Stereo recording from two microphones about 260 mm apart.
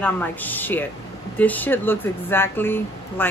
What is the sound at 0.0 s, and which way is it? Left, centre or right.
A woman's voice, centre.